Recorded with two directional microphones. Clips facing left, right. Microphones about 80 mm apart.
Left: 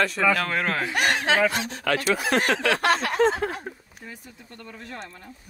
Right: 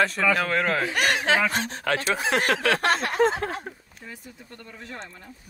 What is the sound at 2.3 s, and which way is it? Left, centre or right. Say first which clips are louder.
Speech: right 1 dB; centre.